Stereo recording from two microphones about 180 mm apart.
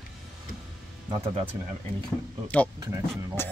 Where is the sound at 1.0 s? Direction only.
30° right (ahead or behind).